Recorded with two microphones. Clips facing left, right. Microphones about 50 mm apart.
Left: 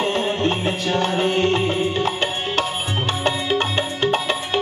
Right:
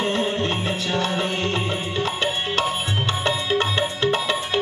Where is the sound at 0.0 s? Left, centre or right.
Left.